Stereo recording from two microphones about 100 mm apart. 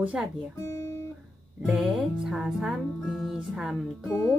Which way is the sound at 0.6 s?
35° left (ahead or behind).